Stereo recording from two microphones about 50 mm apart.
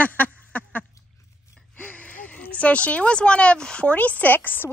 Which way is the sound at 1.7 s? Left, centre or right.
Left.